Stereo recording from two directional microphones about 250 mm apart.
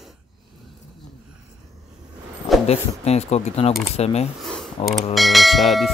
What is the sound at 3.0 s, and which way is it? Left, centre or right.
Speech, left.